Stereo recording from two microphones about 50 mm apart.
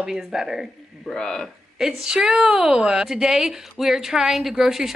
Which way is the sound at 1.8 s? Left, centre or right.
Centre.